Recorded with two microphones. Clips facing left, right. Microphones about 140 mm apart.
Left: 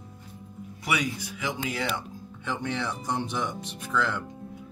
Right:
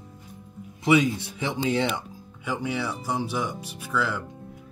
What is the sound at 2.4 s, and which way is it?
Speech, 10° right (ahead or behind).